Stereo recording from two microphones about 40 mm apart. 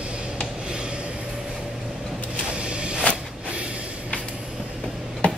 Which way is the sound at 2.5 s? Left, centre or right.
Right.